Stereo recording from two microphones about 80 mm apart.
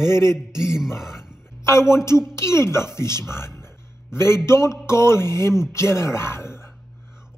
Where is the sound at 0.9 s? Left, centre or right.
Centre.